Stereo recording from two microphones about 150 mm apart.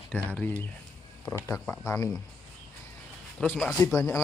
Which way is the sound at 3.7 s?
15° left (ahead or behind).